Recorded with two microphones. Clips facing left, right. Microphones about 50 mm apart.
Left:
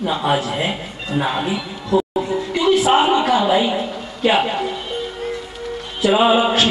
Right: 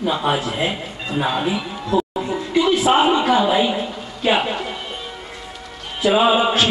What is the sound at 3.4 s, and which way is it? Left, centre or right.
Speech, centre.